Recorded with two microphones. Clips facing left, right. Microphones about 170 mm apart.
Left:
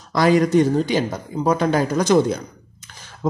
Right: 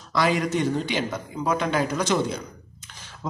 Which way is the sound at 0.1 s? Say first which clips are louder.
Left 7 dB; 40° left (ahead or behind).